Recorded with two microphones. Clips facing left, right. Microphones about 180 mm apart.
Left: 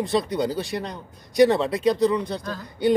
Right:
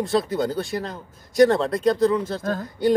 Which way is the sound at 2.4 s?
50° right (ahead or behind).